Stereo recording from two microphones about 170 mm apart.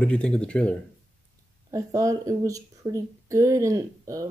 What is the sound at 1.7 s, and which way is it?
Speech, 20° right (ahead or behind).